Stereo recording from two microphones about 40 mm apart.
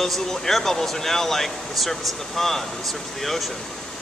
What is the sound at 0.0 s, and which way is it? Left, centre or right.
Speech, centre.